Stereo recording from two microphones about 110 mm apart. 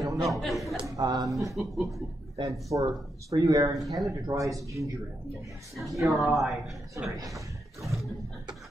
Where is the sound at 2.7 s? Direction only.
35° right (ahead or behind).